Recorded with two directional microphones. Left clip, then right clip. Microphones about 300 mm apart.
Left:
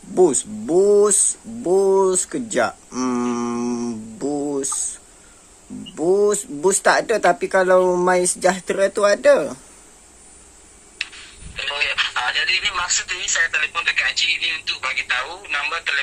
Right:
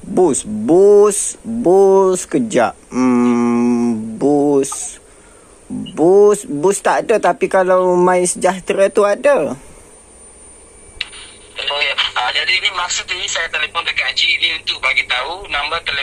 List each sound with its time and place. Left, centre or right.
0.1 s speech: centre
2.6 s a sound: centre
6.1 s speech: centre
8.6 s speech: centre
11.0 s speech: centre